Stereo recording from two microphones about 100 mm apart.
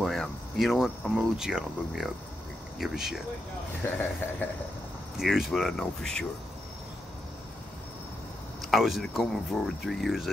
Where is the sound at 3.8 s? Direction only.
20° left (ahead or behind).